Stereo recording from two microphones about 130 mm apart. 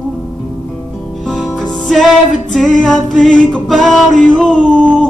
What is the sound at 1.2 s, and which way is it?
Music, centre (ahead or behind).